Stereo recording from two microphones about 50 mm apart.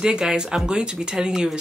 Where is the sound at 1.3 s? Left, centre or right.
Centre.